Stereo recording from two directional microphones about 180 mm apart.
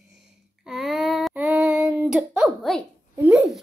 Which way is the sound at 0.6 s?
Centre (ahead or behind).